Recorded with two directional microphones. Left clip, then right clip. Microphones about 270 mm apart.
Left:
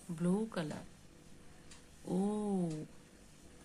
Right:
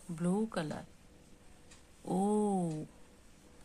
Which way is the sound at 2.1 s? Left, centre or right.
Centre.